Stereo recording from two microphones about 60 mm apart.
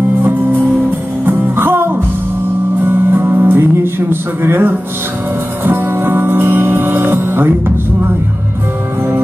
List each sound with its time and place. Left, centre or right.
1.2 s music: right